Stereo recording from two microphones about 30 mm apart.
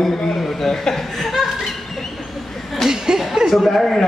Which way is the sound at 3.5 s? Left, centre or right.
Centre.